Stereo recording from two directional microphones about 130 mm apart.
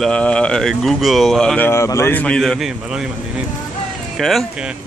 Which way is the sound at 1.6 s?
20° left (ahead or behind).